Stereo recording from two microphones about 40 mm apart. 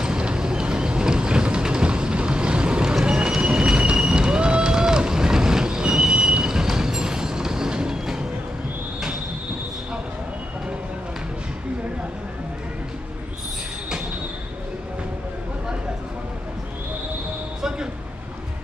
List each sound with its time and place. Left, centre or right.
0.0 s vehicle: right
6.5 s train: centre
17.6 s a sound: centre